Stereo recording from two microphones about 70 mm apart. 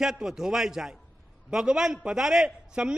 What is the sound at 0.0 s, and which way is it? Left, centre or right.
A man's voice, centre.